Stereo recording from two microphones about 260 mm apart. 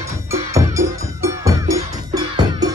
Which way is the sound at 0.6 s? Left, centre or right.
Centre.